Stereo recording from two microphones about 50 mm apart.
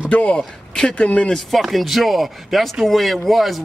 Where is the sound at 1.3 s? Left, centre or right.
Centre.